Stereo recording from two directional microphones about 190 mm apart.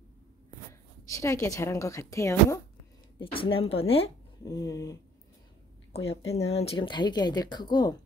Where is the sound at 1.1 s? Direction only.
15° left (ahead or behind).